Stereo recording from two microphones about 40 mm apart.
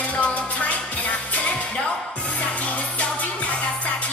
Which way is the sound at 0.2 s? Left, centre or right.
Left.